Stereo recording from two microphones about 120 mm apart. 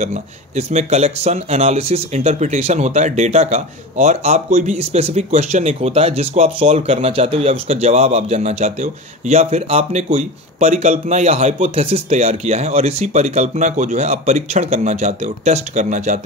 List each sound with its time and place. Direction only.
0.0 s speech: 70° right (ahead or behind)
11.7 s speech: 55° right (ahead or behind)
12.3 s speech: 65° right (ahead or behind); by 16.2 s 85° right